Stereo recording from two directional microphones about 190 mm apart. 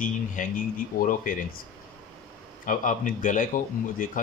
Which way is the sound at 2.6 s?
45° left (ahead or behind).